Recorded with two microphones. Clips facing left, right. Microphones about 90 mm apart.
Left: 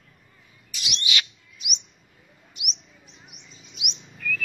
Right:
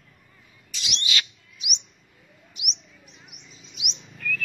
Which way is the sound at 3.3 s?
5° right (ahead or behind).